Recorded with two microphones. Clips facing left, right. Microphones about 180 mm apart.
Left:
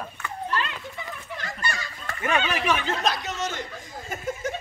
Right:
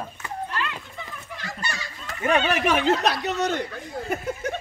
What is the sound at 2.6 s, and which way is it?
Speech, 55° right (ahead or behind).